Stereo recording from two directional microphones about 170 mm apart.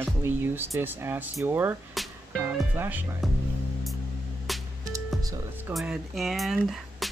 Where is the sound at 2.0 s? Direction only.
Centre (ahead or behind).